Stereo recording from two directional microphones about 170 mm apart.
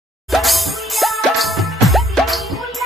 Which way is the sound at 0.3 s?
Centre (ahead or behind).